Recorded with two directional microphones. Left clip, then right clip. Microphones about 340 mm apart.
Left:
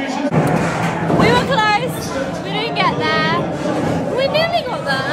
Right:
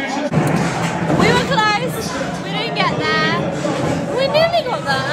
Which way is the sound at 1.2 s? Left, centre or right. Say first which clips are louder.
Left 1 dB; centre.